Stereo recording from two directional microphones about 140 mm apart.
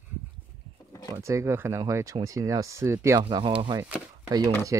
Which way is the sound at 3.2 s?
35° right (ahead or behind).